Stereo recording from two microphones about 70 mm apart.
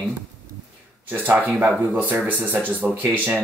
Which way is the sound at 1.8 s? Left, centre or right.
Right.